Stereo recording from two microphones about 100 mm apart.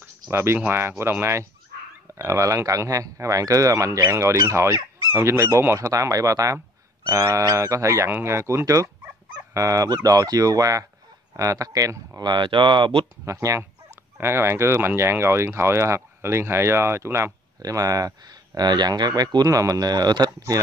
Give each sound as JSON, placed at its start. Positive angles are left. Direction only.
{"t": 0.3, "sound": "speech", "side_deg": -25}
{"t": 2.1, "sound": "speech", "side_deg": -30}
{"t": 12.2, "sound": "speech", "side_deg": -50}
{"t": 13.2, "sound": "speech", "side_deg": -30}